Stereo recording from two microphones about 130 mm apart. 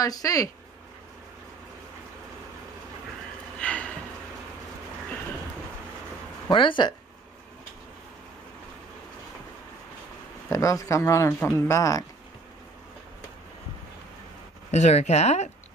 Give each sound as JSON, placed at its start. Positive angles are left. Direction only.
{"t": 0.0, "sound": "speech", "side_deg": 25}
{"t": 3.5, "sound": "a sound", "side_deg": 10}
{"t": 6.4, "sound": "speech", "side_deg": 40}
{"t": 10.5, "sound": "speech", "side_deg": 25}
{"t": 14.7, "sound": "speech", "side_deg": 60}